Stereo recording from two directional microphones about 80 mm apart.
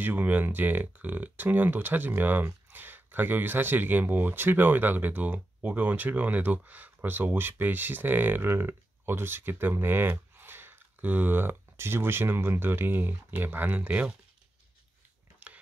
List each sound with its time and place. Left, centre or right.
0.0 s speech: right